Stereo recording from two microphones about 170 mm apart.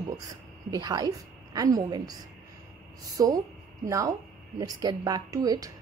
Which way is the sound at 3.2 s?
20° right (ahead or behind).